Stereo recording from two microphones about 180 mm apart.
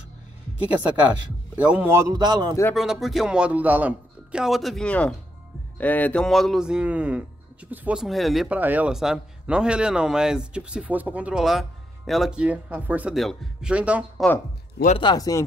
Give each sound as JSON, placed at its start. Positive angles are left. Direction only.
{"t": 1.6, "sound": "speech", "side_deg": -10}
{"t": 2.7, "sound": "speech", "side_deg": 0}
{"t": 15.0, "sound": "speech", "side_deg": 25}